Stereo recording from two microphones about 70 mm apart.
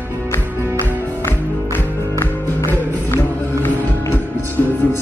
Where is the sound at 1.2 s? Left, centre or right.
Left.